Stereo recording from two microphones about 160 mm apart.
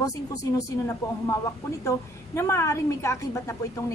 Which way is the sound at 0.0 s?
20° left (ahead or behind).